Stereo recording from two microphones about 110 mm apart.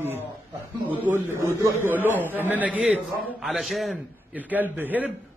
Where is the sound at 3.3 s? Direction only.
Centre (ahead or behind).